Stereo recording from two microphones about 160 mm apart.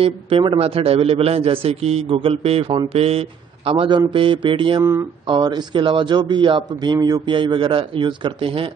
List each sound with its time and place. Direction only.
0.0 s a man's voice: 35° right (ahead or behind)
4.8 s speech: 15° right (ahead or behind)
5.4 s speech: 30° right (ahead or behind)